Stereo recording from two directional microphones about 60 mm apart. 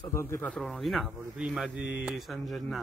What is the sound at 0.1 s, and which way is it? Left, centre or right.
Speech, left.